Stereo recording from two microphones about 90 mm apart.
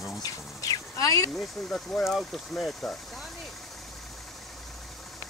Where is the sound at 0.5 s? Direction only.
40° left (ahead or behind).